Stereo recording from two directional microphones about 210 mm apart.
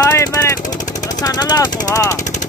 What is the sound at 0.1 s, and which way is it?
Vehicle, 10° left (ahead or behind).